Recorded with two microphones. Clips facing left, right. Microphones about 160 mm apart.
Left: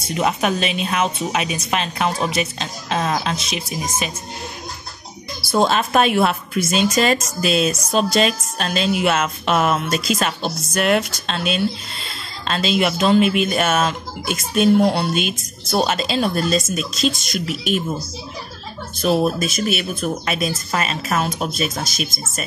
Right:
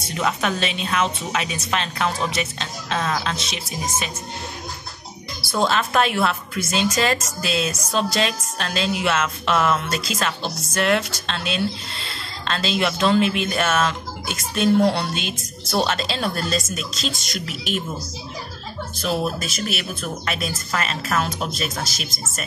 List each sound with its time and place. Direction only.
0.2 s a woman's voice: 15° left (ahead or behind)
5.5 s a woman's voice: 20° left (ahead or behind)
18.9 s speech: 20° left (ahead or behind)